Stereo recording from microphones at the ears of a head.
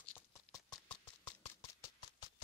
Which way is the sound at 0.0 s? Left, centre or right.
Left.